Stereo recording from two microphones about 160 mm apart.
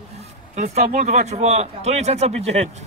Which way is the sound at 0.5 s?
45° right (ahead or behind).